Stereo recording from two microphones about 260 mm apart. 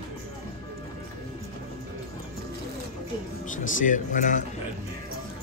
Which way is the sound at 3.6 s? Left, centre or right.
Left.